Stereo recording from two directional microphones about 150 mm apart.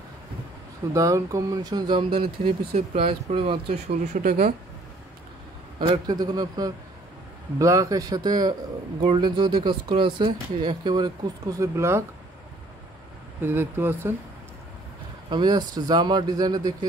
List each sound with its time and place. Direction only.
0.9 s speech: 20° right (ahead or behind)
4.0 s speech: 60° right (ahead or behind)
5.8 s speech: 30° right (ahead or behind)
13.4 s speech: 15° right (ahead or behind)
15.2 s speech: 30° right (ahead or behind)